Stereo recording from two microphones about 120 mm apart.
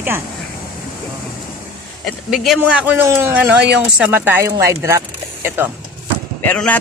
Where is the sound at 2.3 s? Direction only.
Centre (ahead or behind).